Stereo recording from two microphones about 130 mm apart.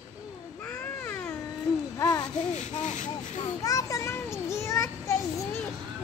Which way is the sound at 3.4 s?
25° left (ahead or behind).